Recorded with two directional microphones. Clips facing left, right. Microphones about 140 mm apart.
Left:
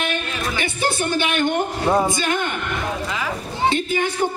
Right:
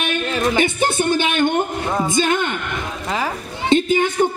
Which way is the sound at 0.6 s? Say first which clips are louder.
Right 5 dB; 25° right (ahead or behind).